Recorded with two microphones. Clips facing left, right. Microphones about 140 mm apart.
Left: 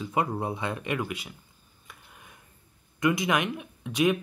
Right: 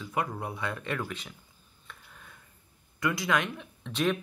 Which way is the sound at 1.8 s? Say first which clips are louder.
Even; 15° left (ahead or behind).